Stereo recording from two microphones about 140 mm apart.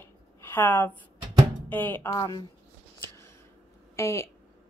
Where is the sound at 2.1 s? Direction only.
25° left (ahead or behind).